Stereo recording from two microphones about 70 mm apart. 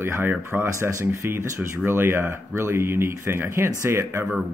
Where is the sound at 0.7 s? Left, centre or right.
Right.